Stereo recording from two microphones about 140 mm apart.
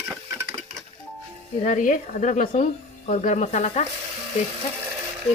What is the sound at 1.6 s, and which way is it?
Speech, 65° left (ahead or behind).